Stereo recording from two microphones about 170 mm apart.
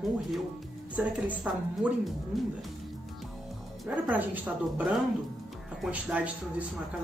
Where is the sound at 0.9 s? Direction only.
5° right (ahead or behind).